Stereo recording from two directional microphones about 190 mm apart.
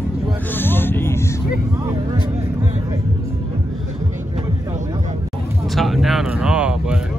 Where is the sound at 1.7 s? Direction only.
15° right (ahead or behind).